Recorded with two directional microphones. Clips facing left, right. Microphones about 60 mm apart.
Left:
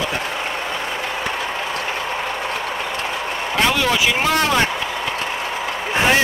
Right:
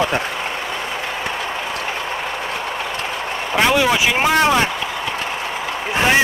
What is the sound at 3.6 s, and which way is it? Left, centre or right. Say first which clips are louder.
Speech: right 3 dB; centre.